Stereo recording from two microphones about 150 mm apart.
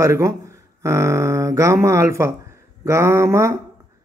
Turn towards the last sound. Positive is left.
turn(degrees=-20)  # may be behind; listen again after turning